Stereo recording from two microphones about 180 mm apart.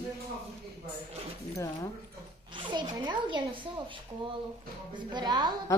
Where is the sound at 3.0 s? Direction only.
25° right (ahead or behind).